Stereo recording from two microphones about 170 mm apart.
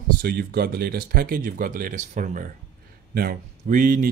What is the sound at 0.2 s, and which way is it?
Speech, 60° right (ahead or behind).